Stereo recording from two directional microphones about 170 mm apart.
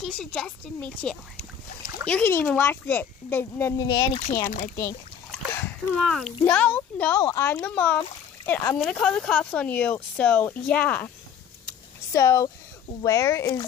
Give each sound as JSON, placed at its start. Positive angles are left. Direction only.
{"t": 0.0, "sound": "a woman's voice", "side_deg": 0}
{"t": 3.9, "sound": "speech", "side_deg": 25}
{"t": 4.5, "sound": "speech", "side_deg": 55}
{"t": 5.3, "sound": "splash", "side_deg": 10}
{"t": 5.9, "sound": "a woman's voice", "side_deg": 0}
{"t": 11.6, "sound": "a sound", "side_deg": 15}
{"t": 13.0, "sound": "speech", "side_deg": 20}